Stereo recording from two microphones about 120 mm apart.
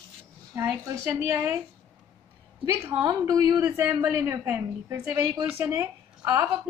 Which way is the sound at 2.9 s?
35° right (ahead or behind).